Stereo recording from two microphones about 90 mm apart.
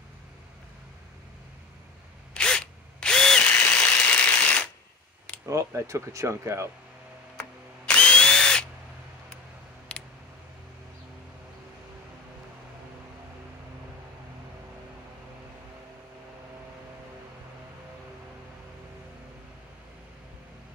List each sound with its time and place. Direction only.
2.3 s drill: 10° left (ahead or behind)
5.5 s speech: 35° right (ahead or behind)
7.8 s drill: 10° left (ahead or behind)
9.9 s a sound: 10° left (ahead or behind)